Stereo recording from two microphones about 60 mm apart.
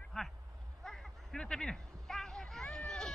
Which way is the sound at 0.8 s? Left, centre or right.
Centre.